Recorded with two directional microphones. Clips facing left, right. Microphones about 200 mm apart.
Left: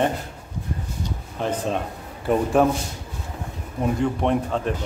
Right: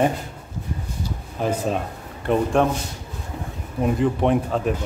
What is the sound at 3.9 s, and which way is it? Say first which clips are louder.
Speech: right 2 dB; centre (ahead or behind).